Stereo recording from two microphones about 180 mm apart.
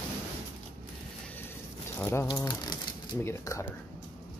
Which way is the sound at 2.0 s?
15° left (ahead or behind).